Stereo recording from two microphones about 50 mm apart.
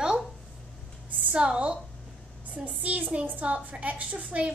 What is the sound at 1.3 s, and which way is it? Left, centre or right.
A woman's voice, right.